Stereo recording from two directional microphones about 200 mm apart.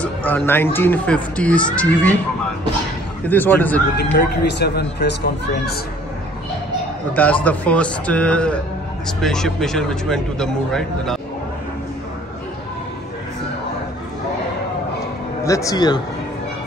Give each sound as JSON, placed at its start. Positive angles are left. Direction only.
{"t": 0.0, "sound": "speech", "side_deg": 10}
{"t": 3.3, "sound": "speech", "side_deg": 10}
{"t": 3.9, "sound": "speech", "side_deg": 50}
{"t": 7.4, "sound": "a man's voice", "side_deg": 5}
{"t": 15.4, "sound": "speech", "side_deg": 15}